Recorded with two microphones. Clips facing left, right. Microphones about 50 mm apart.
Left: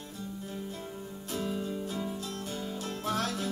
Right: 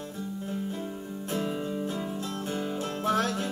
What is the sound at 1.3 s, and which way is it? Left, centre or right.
Music, right.